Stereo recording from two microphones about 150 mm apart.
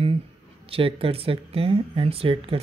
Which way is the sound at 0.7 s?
40° right (ahead or behind).